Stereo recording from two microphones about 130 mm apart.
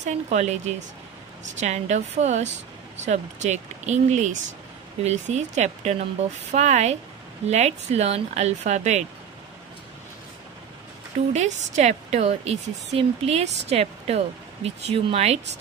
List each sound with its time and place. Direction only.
0.0 s a woman's voice: 65° right (ahead or behind)
11.3 s a woman's voice: 60° right (ahead or behind)